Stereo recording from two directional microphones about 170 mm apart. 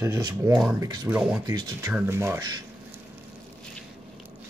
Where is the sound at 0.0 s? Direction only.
20° right (ahead or behind).